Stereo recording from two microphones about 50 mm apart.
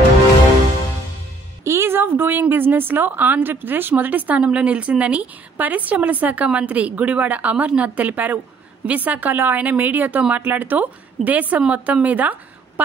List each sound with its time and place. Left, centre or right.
1.6 s a sound: right
2.5 s a woman's voice: right
4.4 s a woman's voice: right